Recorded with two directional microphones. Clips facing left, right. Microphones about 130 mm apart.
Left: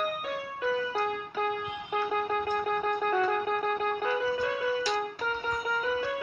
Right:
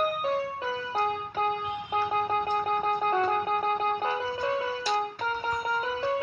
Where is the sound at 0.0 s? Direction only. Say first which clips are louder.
Right 5 dB; 35° right (ahead or behind).